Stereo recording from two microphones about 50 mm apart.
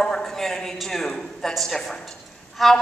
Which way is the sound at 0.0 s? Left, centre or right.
Centre.